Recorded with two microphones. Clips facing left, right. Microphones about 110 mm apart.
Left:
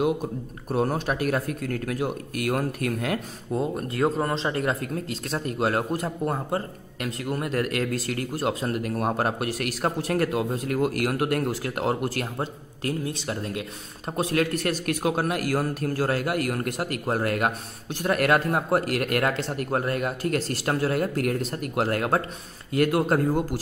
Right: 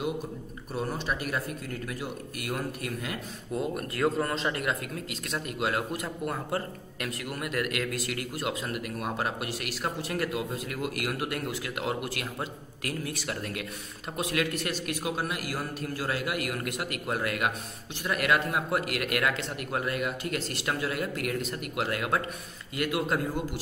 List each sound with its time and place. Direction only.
0.7 s a man's voice: 50° left (ahead or behind)
3.5 s speech: 25° left (ahead or behind)
14.1 s a man's voice: 40° left (ahead or behind)